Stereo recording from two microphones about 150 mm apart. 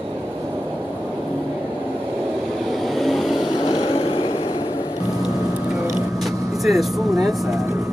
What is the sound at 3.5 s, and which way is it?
Vehicle, 35° left (ahead or behind).